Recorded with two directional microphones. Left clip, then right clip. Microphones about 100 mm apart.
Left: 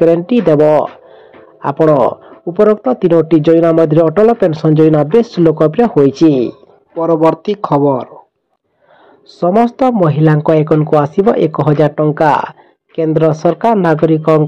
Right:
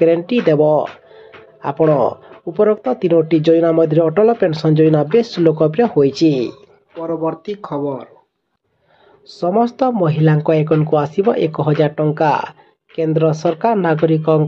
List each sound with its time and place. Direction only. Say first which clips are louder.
0.0 s speech: left 3 dB; 30° left (ahead or behind)
7.0 s speech: left 10 dB; 80° left
9.5 s speech: left 4 dB; 25° left (ahead or behind)